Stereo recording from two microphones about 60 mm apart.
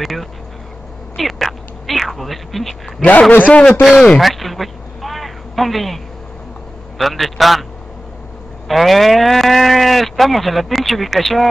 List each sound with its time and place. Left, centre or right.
0.0 s speech: centre
1.1 s a sound: centre
3.0 s a man's voice: left
4.2 s a sound: centre
7.0 s speech: centre
8.6 s speech: centre